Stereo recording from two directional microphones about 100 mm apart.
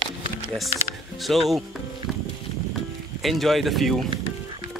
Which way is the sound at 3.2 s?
Centre (ahead or behind).